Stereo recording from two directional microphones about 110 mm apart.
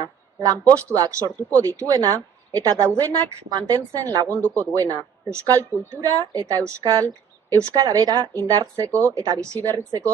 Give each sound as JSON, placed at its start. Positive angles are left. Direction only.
{"t": 0.0, "sound": "a woman's voice", "side_deg": -35}